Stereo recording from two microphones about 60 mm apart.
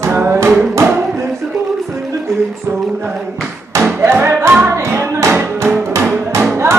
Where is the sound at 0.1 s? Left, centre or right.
Right.